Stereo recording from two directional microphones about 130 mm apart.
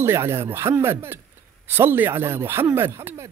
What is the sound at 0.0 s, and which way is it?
Speech, 20° right (ahead or behind).